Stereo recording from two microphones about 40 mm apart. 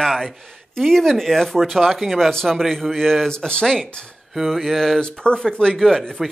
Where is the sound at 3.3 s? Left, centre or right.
Centre.